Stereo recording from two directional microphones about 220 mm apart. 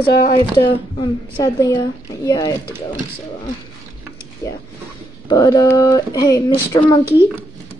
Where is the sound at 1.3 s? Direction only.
15° left (ahead or behind).